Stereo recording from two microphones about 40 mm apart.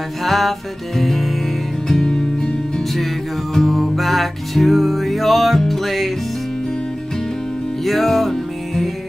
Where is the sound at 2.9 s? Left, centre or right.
Centre.